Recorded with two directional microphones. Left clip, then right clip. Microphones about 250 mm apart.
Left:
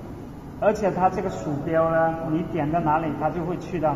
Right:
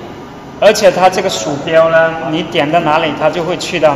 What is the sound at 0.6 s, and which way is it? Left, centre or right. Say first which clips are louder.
A man's voice: right 14 dB; right.